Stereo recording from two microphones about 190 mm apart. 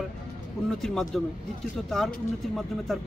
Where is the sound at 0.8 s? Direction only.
Centre (ahead or behind).